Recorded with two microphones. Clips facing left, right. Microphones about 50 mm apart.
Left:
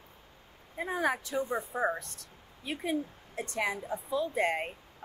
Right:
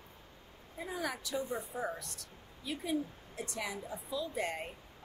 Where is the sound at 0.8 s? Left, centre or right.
Left.